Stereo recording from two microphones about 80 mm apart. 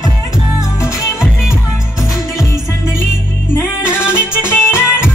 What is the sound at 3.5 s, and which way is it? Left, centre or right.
Music, left.